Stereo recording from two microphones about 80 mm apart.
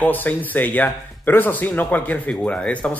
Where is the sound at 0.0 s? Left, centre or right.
Left.